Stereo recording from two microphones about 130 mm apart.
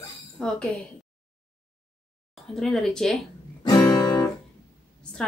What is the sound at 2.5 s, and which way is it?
Speech, 5° left (ahead or behind).